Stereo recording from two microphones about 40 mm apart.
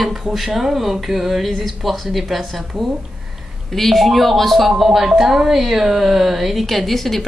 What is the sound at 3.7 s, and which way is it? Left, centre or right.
Speech, centre.